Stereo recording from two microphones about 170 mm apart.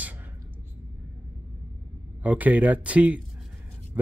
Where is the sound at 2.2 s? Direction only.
10° right (ahead or behind).